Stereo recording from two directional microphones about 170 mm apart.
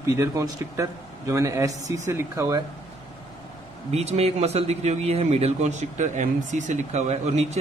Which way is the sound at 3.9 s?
40° right (ahead or behind).